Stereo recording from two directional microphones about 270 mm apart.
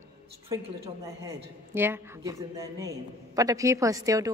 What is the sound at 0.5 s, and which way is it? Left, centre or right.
Speech, centre.